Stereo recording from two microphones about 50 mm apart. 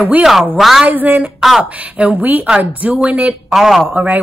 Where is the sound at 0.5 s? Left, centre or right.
Centre.